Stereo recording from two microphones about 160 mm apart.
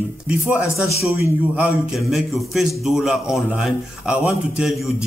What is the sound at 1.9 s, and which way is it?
A man's voice, centre (ahead or behind).